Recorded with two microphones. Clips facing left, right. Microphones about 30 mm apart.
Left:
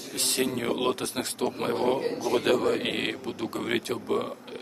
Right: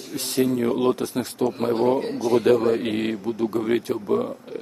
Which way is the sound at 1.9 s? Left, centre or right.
Right.